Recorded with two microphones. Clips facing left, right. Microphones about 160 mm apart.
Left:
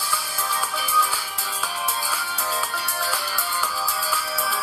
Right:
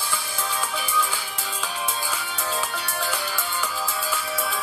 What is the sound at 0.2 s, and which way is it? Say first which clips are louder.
Music: left 1 dB; centre (ahead or behind).